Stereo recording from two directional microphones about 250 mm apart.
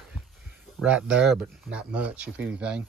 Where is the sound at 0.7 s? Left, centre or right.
Centre.